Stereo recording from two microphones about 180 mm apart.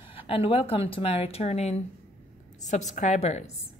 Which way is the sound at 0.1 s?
30° left (ahead or behind).